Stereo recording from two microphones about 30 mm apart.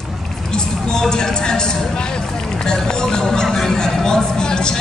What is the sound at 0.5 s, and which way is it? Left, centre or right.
Speech, left.